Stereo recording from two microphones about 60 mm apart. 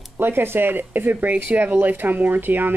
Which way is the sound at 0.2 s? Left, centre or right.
Right.